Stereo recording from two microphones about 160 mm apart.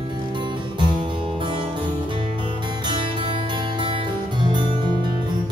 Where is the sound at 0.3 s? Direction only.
30° right (ahead or behind).